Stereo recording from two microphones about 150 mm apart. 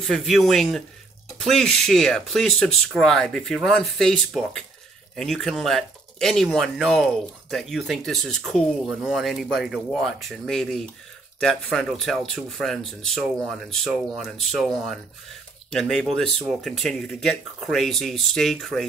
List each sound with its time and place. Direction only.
0.0 s speech: centre (ahead or behind)
15.7 s speech: 5° left (ahead or behind)